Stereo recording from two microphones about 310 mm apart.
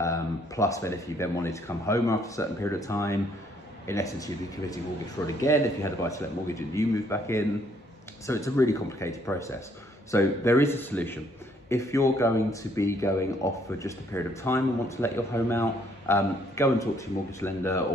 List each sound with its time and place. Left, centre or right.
0.0 s speech: centre